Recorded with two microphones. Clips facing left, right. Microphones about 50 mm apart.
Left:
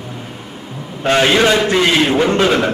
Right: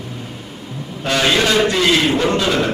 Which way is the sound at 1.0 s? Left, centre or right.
Left.